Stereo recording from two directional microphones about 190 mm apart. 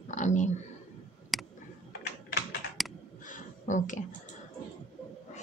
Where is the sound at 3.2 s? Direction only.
45° left (ahead or behind).